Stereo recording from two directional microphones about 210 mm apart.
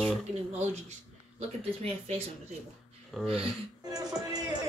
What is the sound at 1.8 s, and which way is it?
Speech, 30° right (ahead or behind).